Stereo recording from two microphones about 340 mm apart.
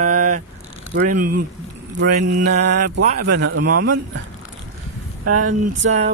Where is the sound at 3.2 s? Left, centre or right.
Right.